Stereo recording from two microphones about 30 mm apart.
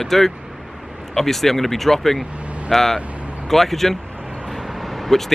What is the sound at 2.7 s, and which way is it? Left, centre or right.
Speech, centre.